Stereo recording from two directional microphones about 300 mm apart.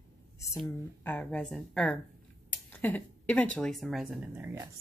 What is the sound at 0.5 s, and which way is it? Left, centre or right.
A woman's voice, centre.